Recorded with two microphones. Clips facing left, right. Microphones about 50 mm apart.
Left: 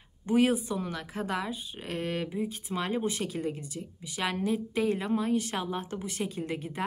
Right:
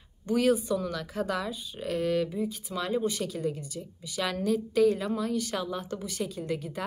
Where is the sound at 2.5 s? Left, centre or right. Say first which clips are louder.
Right 1 dB; left.